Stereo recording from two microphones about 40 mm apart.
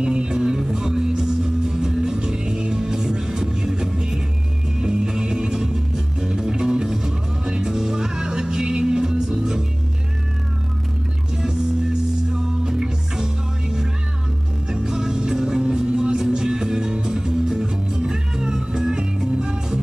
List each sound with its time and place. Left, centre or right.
0.0 s music: right
12.3 s music: centre